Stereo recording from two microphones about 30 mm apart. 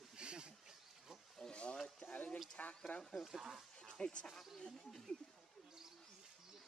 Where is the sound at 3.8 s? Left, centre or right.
Left.